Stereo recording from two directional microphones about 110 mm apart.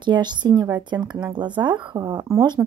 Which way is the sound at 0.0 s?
45° right (ahead or behind).